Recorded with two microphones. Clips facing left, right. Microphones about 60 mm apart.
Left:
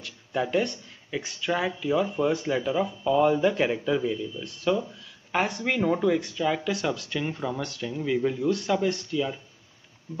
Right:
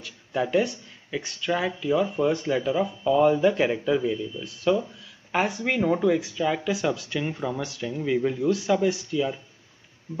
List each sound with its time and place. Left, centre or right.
0.0 s speech: centre